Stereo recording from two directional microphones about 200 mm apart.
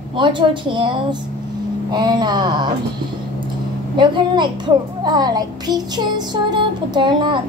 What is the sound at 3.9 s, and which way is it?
A child's voice, 25° right (ahead or behind).